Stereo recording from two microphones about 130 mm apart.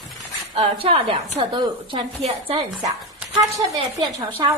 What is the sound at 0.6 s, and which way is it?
Speech, 50° right (ahead or behind).